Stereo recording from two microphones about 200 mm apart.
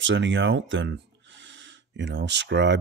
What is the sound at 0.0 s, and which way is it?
Speech, 65° right (ahead or behind).